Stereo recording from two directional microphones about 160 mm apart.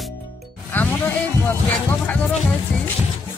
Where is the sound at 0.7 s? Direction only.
15° left (ahead or behind).